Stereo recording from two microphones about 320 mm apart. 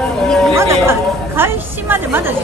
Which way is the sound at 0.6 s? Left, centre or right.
Centre.